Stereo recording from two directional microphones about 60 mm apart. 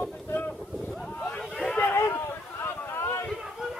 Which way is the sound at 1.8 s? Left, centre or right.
Left.